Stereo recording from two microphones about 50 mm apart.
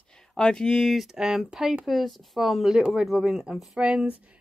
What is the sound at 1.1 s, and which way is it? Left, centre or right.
Speech, centre.